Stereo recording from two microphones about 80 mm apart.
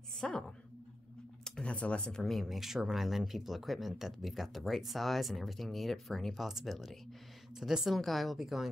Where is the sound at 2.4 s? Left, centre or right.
Centre.